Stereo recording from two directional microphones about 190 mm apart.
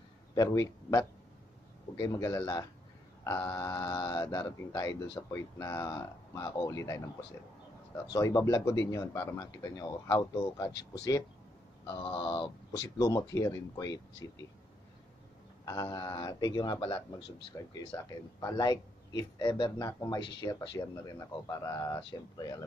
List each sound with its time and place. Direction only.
0.3 s a man's voice: 20° left (ahead or behind)
10.7 s speech: 65° left (ahead or behind)
11.9 s speech: 25° left (ahead or behind)
15.6 s speech: 20° left (ahead or behind)